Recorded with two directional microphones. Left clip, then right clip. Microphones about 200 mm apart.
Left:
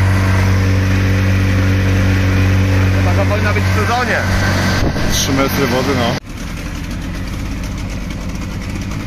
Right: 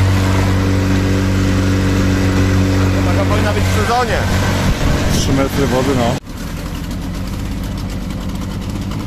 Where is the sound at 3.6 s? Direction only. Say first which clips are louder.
Right 1 dB; 55° right (ahead or behind).